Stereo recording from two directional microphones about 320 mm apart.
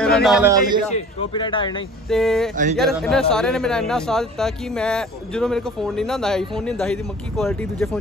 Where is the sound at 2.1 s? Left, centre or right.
Centre.